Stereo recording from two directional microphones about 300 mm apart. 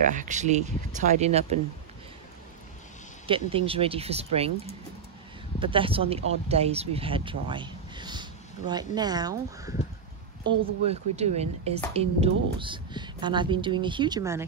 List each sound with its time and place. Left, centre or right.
0.0 s speech: right
3.3 s speech: centre
5.6 s speech: centre